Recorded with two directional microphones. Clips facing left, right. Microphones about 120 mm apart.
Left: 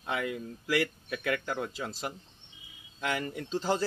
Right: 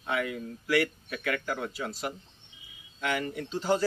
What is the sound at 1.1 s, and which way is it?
Speech, 25° left (ahead or behind).